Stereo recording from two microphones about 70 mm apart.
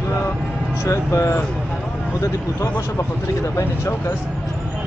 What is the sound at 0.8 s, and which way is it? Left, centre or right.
Speech, left.